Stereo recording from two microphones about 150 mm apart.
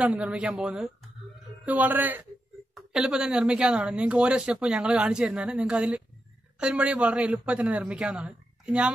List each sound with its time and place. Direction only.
0.0 s speech: 5° right (ahead or behind)